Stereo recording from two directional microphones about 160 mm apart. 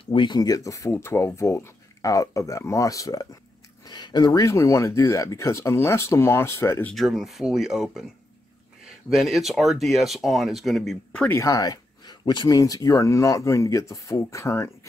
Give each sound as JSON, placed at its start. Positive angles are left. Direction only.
{"t": 0.0, "sound": "speech", "side_deg": 30}
{"t": 6.9, "sound": "speech", "side_deg": 0}
{"t": 9.1, "sound": "speech", "side_deg": 0}
{"t": 11.2, "sound": "speech", "side_deg": 20}